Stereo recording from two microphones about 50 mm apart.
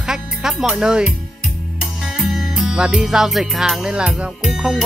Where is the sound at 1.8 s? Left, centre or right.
Centre.